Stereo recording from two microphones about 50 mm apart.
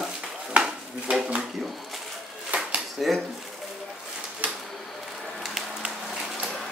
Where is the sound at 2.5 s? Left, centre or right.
Right.